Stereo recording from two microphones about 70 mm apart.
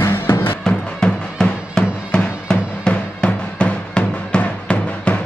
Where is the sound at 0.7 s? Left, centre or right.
Centre.